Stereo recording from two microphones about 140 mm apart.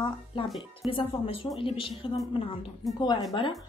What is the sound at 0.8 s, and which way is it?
Speech, 40° left (ahead or behind).